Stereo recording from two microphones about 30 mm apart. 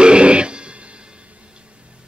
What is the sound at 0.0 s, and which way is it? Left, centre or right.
Music, right.